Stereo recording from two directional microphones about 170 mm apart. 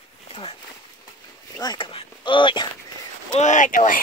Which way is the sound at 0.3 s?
30° left (ahead or behind).